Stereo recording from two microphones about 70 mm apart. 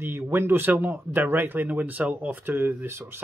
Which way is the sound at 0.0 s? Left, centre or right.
Right.